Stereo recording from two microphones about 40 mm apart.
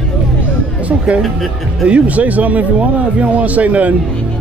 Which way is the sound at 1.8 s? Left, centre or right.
Right.